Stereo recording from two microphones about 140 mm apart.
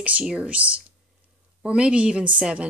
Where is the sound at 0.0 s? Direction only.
5° right (ahead or behind).